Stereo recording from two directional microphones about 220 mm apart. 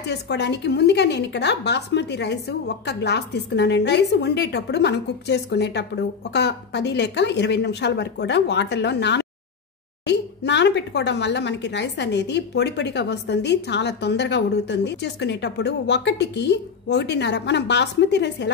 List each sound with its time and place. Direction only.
0.0 s speech: 50° left (ahead or behind)